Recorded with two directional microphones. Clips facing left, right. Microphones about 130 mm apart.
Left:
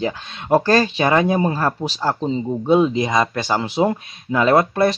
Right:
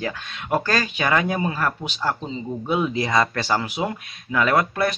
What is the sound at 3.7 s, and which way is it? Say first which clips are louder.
A man's voice: left 8 dB; 30° left (ahead or behind).